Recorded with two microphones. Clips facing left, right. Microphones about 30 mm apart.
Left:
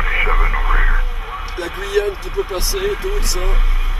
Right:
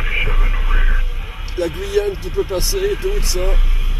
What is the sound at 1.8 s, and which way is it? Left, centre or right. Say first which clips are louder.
Speech: left 3 dB; left.